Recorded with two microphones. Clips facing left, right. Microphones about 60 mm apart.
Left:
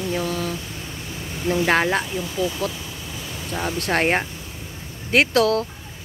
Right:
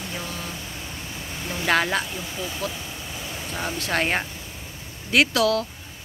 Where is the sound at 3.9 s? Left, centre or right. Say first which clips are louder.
Left 4 dB; left.